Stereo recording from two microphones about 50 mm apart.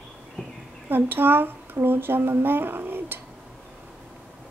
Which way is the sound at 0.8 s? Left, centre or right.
Right.